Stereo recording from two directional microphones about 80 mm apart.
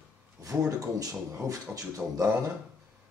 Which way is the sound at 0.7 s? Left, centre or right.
Right.